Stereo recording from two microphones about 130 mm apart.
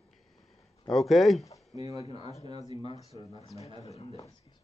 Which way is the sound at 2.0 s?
50° left (ahead or behind).